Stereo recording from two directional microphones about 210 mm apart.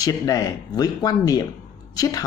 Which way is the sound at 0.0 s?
15° left (ahead or behind).